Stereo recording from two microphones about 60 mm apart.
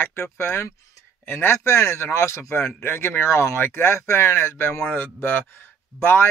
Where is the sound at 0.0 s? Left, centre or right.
Left.